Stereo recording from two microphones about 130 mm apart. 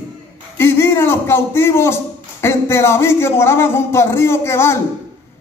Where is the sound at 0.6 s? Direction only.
20° left (ahead or behind).